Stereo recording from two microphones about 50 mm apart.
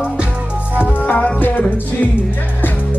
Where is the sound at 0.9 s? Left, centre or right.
Left.